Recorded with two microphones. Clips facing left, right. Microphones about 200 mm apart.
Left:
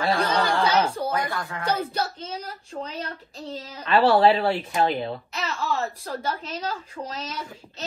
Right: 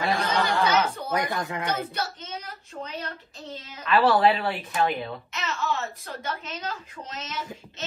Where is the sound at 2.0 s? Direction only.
30° left (ahead or behind).